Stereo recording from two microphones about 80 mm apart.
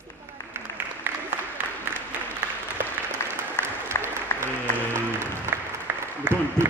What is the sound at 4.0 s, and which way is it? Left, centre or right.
Applause, left.